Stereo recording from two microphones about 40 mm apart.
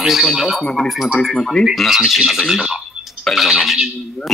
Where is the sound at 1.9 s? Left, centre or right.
Centre.